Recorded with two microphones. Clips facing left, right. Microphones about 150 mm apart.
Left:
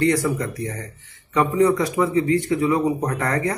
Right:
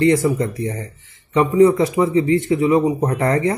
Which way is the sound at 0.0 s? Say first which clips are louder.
Right 4 dB; 25° right (ahead or behind).